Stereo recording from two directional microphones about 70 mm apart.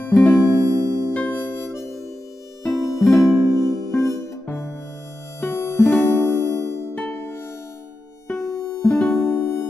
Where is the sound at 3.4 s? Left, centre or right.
Right.